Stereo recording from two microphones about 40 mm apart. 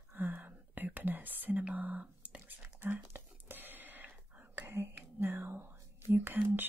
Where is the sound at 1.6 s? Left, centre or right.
Right.